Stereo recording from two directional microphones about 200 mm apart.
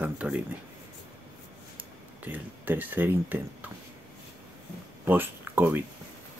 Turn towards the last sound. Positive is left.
turn(degrees=-10)  # may be behind; listen again after turning